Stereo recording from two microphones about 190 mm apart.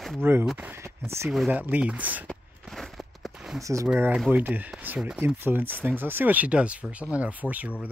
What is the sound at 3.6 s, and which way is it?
Speech, 15° right (ahead or behind).